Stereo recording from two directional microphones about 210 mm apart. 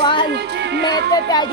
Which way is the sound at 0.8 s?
50° right (ahead or behind).